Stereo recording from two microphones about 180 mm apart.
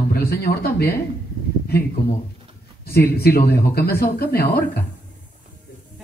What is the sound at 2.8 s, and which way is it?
Speech, 60° left (ahead or behind).